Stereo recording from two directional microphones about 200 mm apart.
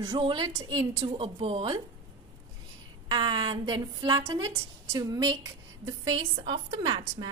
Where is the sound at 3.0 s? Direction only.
20° right (ahead or behind).